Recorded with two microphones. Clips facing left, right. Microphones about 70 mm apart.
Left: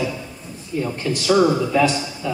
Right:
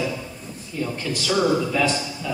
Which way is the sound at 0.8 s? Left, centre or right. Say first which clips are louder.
Left 2 dB; centre.